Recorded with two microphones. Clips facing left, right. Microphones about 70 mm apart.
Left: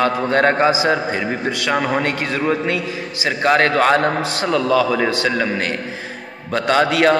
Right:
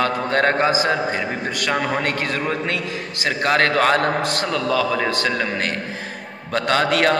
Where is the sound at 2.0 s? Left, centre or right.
Left.